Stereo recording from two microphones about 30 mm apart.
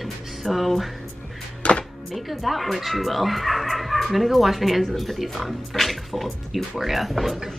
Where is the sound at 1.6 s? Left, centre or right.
Left.